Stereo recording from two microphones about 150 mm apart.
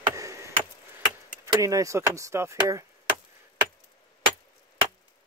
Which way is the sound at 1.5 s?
20° right (ahead or behind).